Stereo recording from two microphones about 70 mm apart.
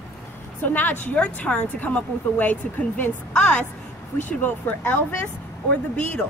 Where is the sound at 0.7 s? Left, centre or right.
Left.